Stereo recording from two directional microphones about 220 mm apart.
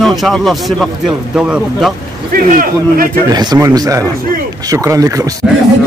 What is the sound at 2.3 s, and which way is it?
Speech, 40° right (ahead or behind).